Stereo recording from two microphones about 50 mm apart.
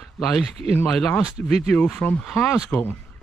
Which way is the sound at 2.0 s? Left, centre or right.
Left.